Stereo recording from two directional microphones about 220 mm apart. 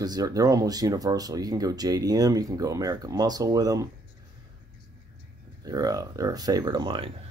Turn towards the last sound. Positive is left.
turn(degrees=-20)  # may be behind; listen again after turning